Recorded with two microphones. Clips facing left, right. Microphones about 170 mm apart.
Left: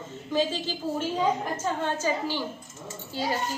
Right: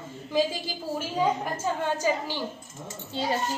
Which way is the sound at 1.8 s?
15° right (ahead or behind).